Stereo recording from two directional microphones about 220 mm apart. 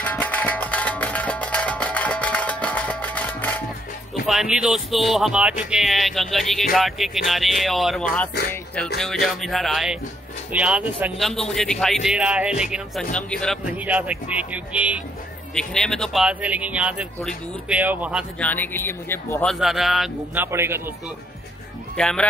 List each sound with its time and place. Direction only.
0.0 s music: 5° left (ahead or behind)
4.1 s speech: centre (ahead or behind)
13.7 s speech: 5° right (ahead or behind)
18.4 s speech: 10° left (ahead or behind)
19.6 s speech: centre (ahead or behind)
21.9 s speech: 5° left (ahead or behind)